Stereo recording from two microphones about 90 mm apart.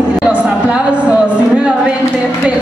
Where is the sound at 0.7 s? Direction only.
15° right (ahead or behind).